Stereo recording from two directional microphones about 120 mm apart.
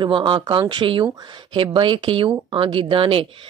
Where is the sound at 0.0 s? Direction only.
40° right (ahead or behind).